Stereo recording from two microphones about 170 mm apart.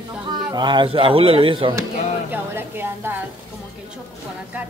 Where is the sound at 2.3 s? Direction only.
15° right (ahead or behind).